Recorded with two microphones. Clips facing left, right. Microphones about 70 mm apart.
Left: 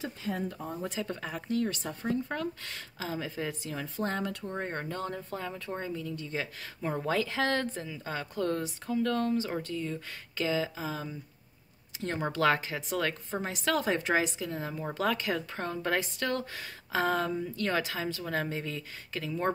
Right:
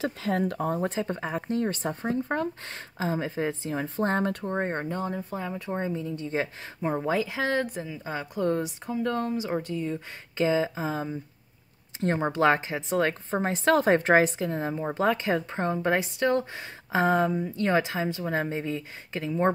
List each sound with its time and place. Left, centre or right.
0.0 s speech: right
0.7 s speech: right